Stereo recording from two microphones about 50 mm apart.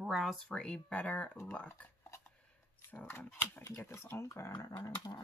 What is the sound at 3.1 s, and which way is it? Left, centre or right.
Speech, left.